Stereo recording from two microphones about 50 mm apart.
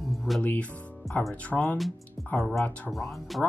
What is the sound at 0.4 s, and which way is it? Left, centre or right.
Speech, left.